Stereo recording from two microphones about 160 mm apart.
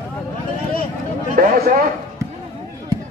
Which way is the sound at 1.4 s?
60° right (ahead or behind).